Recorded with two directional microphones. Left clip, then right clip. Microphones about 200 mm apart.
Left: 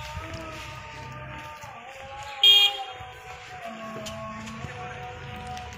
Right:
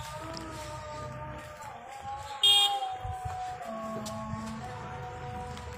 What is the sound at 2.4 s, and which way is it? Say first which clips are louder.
Vehicle: left 6 dB; 45° right (ahead or behind).